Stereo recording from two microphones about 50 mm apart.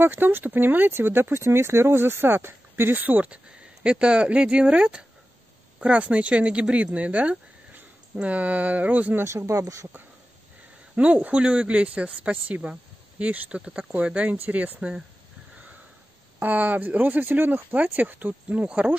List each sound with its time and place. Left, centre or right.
0.0 s speech: right
3.4 s speech: centre
9.2 s speech: right
11.0 s speech: right
13.6 s speech: centre
16.3 s speech: right